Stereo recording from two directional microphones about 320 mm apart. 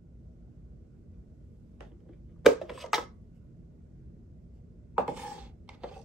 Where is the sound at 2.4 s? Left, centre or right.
Centre.